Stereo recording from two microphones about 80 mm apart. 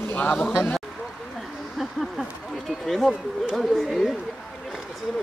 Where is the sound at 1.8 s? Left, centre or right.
Centre.